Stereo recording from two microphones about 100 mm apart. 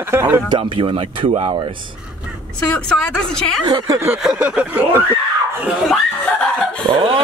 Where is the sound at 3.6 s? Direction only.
50° right (ahead or behind).